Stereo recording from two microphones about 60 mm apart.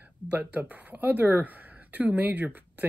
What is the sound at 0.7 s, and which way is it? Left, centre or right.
Speech, right.